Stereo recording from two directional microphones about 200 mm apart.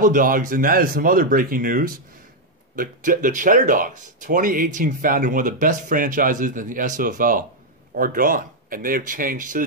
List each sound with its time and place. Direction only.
0.0 s speech: 40° right (ahead or behind)